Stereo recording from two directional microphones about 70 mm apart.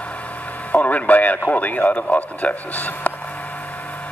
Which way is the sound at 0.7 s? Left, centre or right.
Left.